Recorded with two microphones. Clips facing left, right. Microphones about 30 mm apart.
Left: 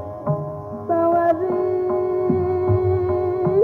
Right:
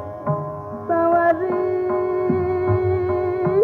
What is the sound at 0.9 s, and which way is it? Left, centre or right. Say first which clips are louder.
Music: right 1 dB; centre.